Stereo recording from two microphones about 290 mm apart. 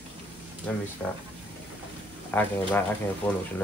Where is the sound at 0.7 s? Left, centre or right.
Centre.